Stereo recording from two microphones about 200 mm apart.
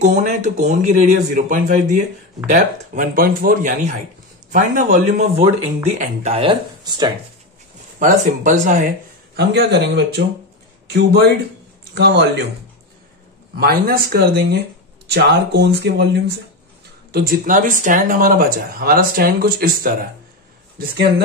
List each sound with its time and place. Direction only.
0.0 s speech: 35° right (ahead or behind); by 7.1 s 20° right (ahead or behind)
8.0 s speech: 40° right (ahead or behind)
9.4 s speech: 60° right (ahead or behind)
13.6 s speech: 50° right (ahead or behind)